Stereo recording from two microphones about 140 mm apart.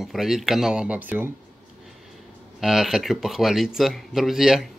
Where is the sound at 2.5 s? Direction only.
Centre (ahead or behind).